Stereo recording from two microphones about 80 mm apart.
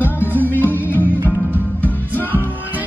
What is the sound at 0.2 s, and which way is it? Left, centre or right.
Music, right.